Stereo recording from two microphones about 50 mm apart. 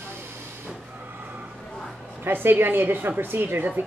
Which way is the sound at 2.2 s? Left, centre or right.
Right.